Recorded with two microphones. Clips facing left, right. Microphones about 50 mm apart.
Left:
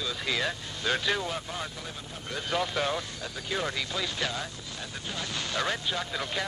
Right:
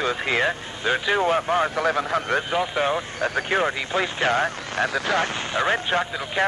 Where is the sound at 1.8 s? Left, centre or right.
Right.